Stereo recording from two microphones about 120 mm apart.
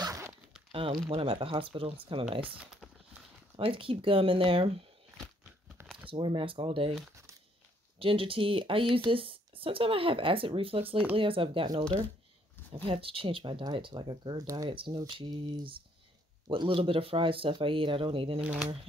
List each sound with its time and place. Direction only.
0.0 s a sound: 25° right (ahead or behind)
0.7 s speech: 50° right (ahead or behind)
3.5 s speech: 50° right (ahead or behind)
6.0 s speech: 50° right (ahead or behind)
8.0 s speech: 50° right (ahead or behind)
12.8 s speech: 50° right (ahead or behind); by 14.7 s 30° right (ahead or behind)
14.7 s speech: 45° right (ahead or behind)
15.0 s a sound: 40° right (ahead or behind)
16.4 s speech: 45° right (ahead or behind)
18.4 s speech: 10° right (ahead or behind)